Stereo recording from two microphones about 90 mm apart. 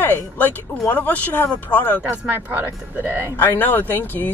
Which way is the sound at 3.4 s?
20° left (ahead or behind).